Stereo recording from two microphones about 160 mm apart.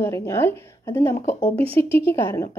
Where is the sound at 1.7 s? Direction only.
15° left (ahead or behind).